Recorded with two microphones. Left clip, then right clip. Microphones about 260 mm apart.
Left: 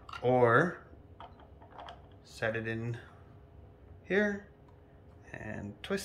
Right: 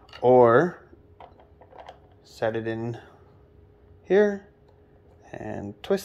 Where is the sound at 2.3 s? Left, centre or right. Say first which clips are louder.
Right 7 dB; right.